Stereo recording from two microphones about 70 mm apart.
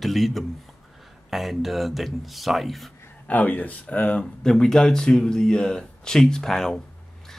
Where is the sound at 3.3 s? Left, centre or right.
Left.